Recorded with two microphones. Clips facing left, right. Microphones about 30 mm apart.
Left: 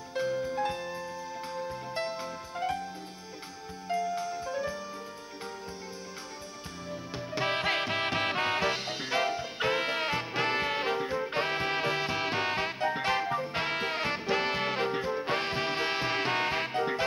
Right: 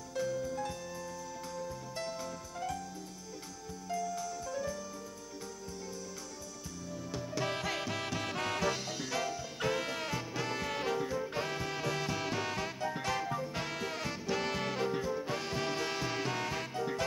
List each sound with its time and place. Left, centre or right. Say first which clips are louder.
0.1 s music: left 4 dB; left
3.9 s music: left 6 dB; left
6.9 s music: left 3 dB; left